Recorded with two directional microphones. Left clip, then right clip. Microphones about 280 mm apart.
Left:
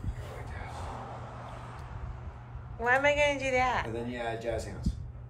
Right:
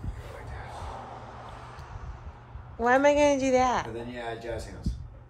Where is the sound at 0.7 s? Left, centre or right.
Right.